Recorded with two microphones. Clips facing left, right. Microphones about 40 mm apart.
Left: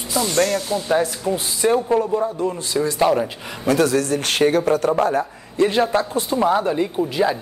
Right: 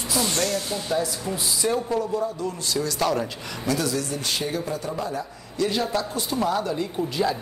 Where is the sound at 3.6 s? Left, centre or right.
Left.